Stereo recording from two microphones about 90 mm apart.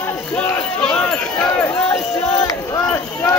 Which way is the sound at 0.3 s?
10° left (ahead or behind).